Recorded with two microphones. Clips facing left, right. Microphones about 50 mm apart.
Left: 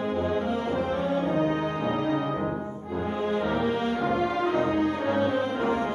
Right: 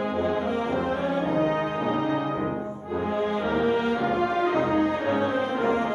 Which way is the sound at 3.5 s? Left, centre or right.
Right.